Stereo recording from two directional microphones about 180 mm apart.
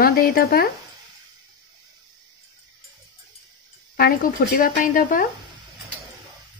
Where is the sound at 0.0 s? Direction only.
55° left (ahead or behind).